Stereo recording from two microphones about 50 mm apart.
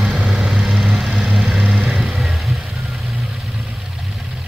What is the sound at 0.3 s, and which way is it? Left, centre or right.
Vehicle, centre.